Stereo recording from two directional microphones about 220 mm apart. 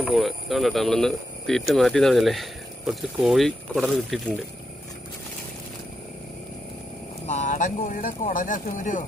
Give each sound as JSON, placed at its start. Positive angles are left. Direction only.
{"t": 0.0, "sound": "speech", "side_deg": 0}
{"t": 7.2, "sound": "speech", "side_deg": 35}